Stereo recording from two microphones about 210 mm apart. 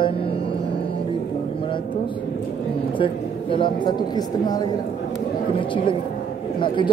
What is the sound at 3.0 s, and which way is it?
Speech, 25° left (ahead or behind).